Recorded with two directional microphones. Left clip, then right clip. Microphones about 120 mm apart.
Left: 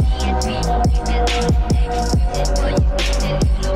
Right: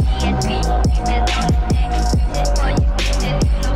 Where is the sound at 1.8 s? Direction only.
25° left (ahead or behind).